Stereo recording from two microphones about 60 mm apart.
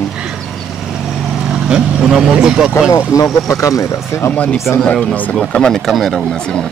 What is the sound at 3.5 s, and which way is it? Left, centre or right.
Speech, left.